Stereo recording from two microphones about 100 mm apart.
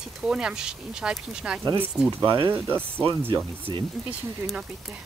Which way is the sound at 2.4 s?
25° right (ahead or behind).